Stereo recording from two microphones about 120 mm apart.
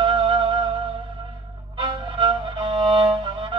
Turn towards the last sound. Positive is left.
turn(degrees=-45)  # may be behind; listen again after turning